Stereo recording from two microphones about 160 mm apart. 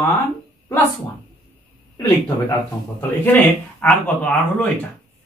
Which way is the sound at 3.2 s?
10° left (ahead or behind).